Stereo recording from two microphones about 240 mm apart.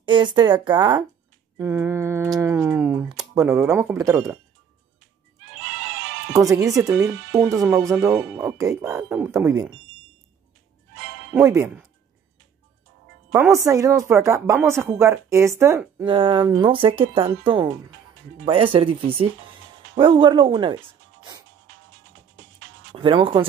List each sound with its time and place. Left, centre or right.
0.0 s speech: centre
6.3 s speech: centre
11.3 s speech: centre
13.3 s speech: centre
16.1 s speech: centre
22.9 s speech: right